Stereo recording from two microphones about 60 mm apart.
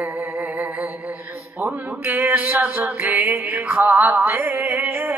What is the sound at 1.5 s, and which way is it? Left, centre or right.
Mantra, right.